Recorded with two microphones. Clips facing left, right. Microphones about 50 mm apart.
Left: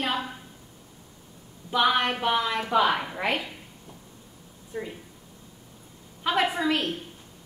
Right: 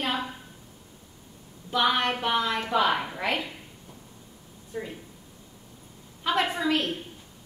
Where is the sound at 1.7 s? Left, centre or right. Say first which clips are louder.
Left 1 dB; centre.